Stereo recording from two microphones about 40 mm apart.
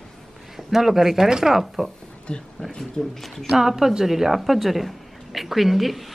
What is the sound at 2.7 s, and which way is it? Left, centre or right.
Speech, centre.